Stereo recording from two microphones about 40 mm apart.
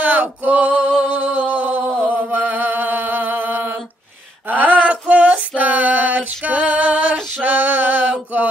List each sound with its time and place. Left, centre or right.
0.0 s male singing: right
1.0 s music: right
4.8 s a sound: right
5.6 s female singing: right
7.4 s male singing: right